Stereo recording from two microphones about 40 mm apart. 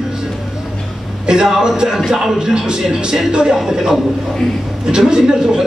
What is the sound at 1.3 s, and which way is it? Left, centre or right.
A man's voice, centre.